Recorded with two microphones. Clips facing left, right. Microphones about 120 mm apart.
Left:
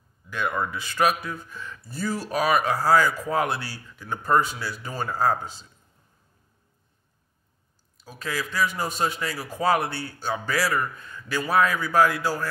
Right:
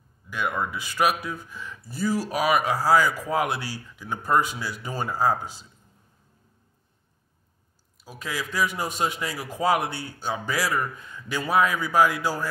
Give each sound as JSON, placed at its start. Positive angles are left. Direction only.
{"t": 0.3, "sound": "speech", "side_deg": -10}
{"t": 8.0, "sound": "speech", "side_deg": -10}